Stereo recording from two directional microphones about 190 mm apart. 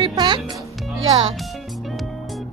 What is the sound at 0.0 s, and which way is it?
Music, 25° right (ahead or behind).